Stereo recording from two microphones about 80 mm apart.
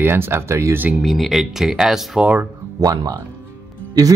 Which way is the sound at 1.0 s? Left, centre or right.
Centre.